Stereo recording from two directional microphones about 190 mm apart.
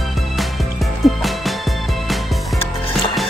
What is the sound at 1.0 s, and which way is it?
Music, centre (ahead or behind).